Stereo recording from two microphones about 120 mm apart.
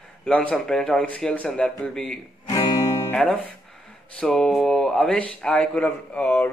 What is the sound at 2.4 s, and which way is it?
Music, 25° left (ahead or behind).